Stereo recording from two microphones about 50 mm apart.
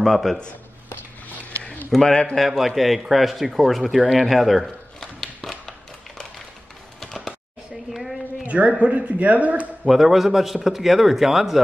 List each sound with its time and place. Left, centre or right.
0.0 s speech: centre
2.0 s a man's voice: centre
2.3 s speech: centre
5.0 s a sound: centre
7.9 s a sound: centre
8.5 s a woman's voice: right
9.8 s speech: centre